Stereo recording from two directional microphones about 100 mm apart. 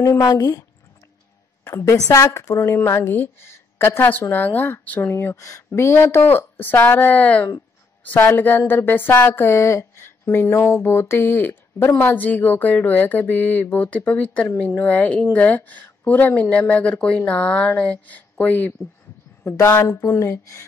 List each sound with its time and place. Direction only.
0.0 s speech: 35° left (ahead or behind)
1.8 s speech: 30° left (ahead or behind)